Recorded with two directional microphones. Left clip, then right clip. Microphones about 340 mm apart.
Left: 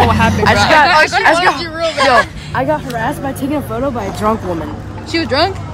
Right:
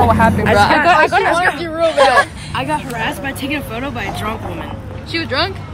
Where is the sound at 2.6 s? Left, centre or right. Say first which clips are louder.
Left 2 dB; centre.